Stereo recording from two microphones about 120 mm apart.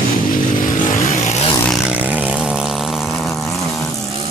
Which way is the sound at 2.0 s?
10° right (ahead or behind).